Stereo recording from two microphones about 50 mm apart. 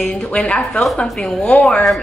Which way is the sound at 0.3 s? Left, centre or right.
Left.